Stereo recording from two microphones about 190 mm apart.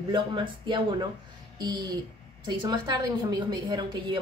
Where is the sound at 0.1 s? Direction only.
25° right (ahead or behind).